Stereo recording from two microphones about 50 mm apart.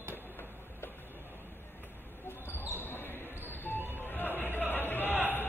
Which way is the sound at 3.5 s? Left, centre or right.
Left.